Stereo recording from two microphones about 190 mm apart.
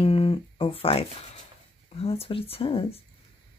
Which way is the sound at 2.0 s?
30° left (ahead or behind).